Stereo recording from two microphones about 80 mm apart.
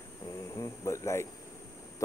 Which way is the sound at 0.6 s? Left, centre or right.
Left.